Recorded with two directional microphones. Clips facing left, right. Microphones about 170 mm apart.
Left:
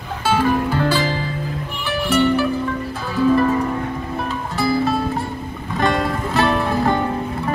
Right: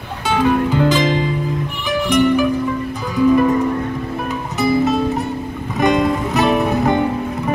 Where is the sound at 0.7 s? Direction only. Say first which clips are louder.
Right 4 dB; 15° right (ahead or behind).